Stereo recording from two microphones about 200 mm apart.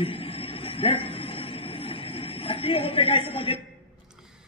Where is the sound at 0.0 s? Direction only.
25° left (ahead or behind).